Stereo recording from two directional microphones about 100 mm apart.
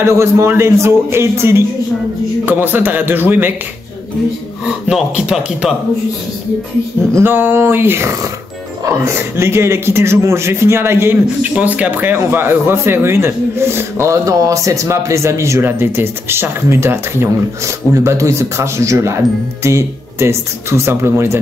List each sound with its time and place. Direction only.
0.0 s speech: 25° right (ahead or behind)
4.8 s speech: 10° right (ahead or behind)
7.2 s speech: 20° right (ahead or behind)
11.5 s speech: 15° right (ahead or behind)